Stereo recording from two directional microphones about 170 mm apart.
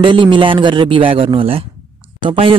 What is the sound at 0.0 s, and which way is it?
Speech, 30° right (ahead or behind).